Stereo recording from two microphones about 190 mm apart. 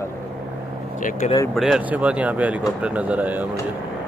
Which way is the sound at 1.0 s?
45° left (ahead or behind).